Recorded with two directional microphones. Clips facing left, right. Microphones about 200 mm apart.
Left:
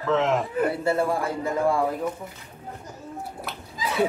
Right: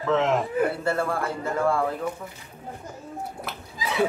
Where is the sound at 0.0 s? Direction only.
Centre (ahead or behind).